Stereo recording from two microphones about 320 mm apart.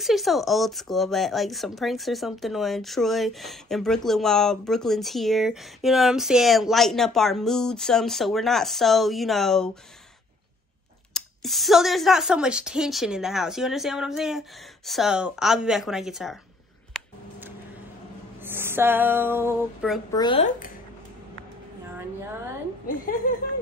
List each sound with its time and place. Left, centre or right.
0.0 s speech: centre
11.1 s speech: centre
18.4 s a sound: centre
20.1 s speech: centre
21.9 s a woman's voice: centre